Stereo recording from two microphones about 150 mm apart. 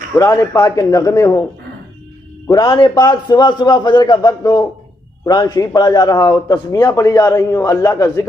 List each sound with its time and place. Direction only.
0.2 s a man's voice: 20° left (ahead or behind)
2.4 s a man's voice: 25° left (ahead or behind)